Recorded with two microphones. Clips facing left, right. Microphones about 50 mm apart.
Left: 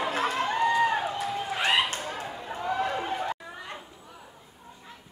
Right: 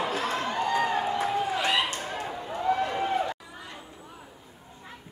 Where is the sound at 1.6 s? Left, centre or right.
Left.